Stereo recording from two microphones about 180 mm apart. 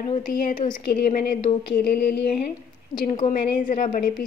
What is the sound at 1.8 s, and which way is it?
Speech, 60° left (ahead or behind).